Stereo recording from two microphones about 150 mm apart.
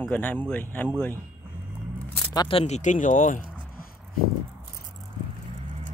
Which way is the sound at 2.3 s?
30° left (ahead or behind).